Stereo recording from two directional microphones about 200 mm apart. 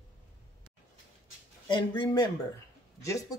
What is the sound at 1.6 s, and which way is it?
Speech, 20° left (ahead or behind).